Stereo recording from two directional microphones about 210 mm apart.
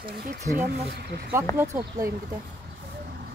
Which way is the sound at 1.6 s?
15° right (ahead or behind).